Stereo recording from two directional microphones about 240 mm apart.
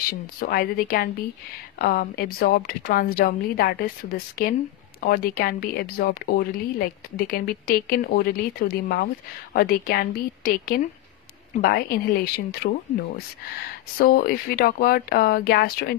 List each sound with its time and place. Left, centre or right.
0.4 s speech: left